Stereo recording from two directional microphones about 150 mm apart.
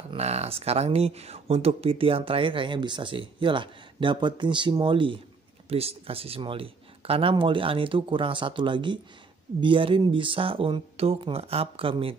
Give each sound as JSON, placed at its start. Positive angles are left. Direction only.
{"t": 0.1, "sound": "speech", "side_deg": -45}